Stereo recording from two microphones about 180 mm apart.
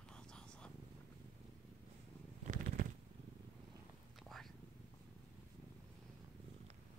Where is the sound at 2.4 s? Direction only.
45° right (ahead or behind).